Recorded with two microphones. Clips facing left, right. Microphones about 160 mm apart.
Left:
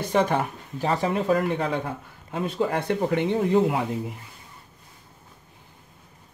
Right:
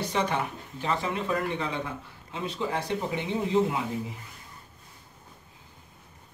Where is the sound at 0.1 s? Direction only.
45° left (ahead or behind).